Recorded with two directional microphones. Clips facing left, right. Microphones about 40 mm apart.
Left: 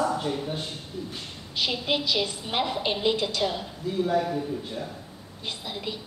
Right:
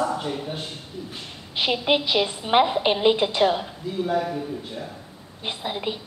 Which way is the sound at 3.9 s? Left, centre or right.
Centre.